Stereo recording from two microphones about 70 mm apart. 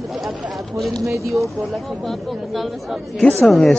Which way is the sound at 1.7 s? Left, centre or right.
Centre.